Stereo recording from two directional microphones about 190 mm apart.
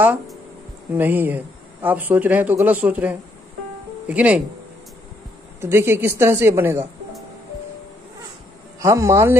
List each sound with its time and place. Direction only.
0.0 s a man's voice: 10° right (ahead or behind)
5.6 s a man's voice: 15° right (ahead or behind)
8.7 s a man's voice: 15° right (ahead or behind)